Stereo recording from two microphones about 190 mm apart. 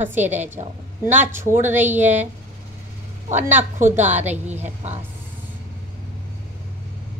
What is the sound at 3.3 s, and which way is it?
A woman's voice, 40° right (ahead or behind).